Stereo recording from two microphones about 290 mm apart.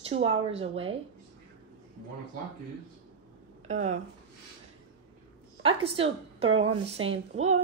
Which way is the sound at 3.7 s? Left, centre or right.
Right.